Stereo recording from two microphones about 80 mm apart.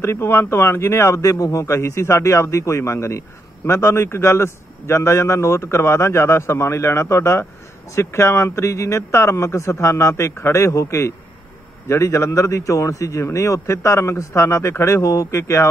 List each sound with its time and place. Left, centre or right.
0.0 s a man's voice: left